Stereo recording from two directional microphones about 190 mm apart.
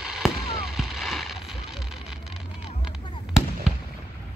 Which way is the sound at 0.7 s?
Centre (ahead or behind).